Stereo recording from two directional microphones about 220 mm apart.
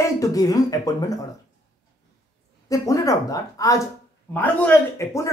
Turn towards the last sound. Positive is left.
turn(degrees=15)  # may be behind; listen again after turning